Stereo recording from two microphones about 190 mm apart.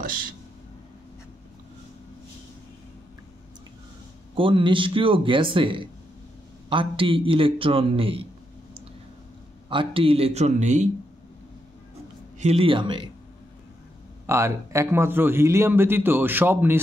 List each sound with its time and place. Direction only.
4.4 s a man's voice: 25° right (ahead or behind)
9.7 s speech: 25° right (ahead or behind)
12.4 s a man's voice: 30° right (ahead or behind)
14.2 s a man's voice: 15° right (ahead or behind)